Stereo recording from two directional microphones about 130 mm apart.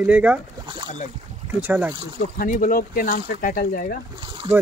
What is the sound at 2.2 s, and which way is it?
Speech, 90° left.